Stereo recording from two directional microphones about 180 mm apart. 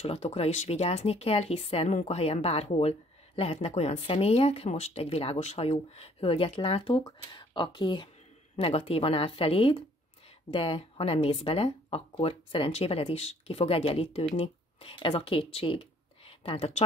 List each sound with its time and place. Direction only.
0.0 s speech: 35° left (ahead or behind)